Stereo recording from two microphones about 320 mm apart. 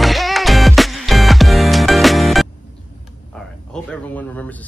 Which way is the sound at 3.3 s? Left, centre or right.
Centre.